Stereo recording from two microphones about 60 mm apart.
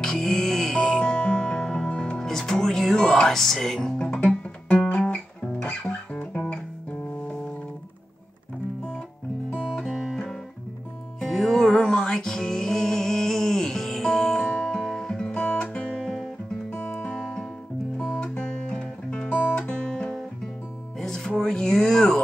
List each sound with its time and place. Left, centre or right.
0.0 s music: centre
9.8 s guitar: centre
11.2 s music: centre
15.9 s guitar: centre
16.7 s music: centre
21.4 s a sound: centre